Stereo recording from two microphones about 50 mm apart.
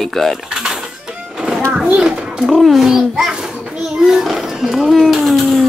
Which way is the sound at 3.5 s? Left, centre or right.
Right.